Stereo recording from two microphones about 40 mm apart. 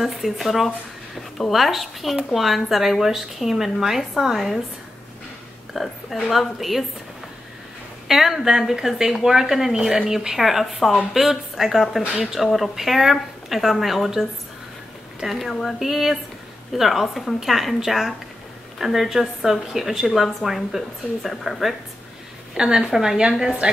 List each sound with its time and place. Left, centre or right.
0.0 s speech: centre
5.8 s speech: centre
8.1 s speech: centre
15.2 s speech: centre
22.5 s speech: centre
23.6 s a woman's voice: right